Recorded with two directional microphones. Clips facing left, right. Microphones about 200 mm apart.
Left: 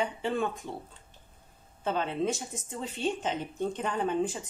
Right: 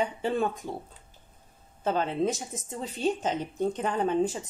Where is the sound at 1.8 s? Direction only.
40° right (ahead or behind).